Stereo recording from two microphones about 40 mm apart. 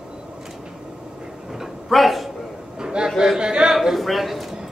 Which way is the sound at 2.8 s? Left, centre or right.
Centre.